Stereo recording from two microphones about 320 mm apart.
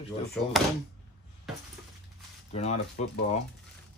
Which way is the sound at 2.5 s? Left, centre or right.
Centre.